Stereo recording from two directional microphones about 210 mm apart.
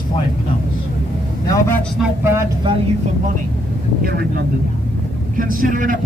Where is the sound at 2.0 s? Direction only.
10° right (ahead or behind).